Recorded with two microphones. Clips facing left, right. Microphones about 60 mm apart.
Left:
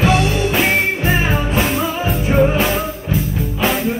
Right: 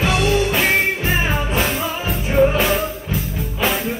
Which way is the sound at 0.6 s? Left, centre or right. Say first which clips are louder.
Left 2 dB; centre.